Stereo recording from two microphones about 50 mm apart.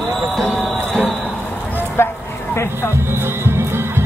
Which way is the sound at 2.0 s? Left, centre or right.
Left.